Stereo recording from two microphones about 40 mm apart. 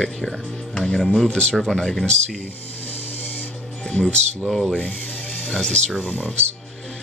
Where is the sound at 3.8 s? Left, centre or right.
Left.